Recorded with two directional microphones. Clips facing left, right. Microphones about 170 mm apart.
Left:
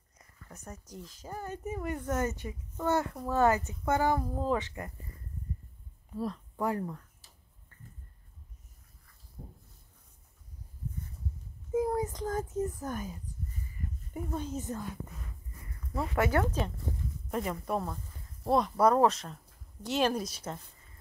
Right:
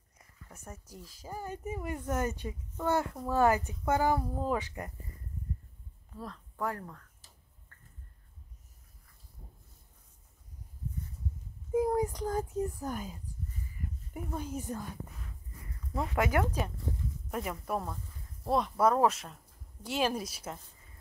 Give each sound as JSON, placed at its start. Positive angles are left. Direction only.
{"t": 0.5, "sound": "speech", "side_deg": -5}
{"t": 6.1, "sound": "a woman's voice", "side_deg": 15}
{"t": 9.4, "sound": "a sound", "side_deg": 55}
{"t": 11.7, "sound": "a child's voice", "side_deg": -15}
{"t": 16.2, "sound": "speech", "side_deg": -15}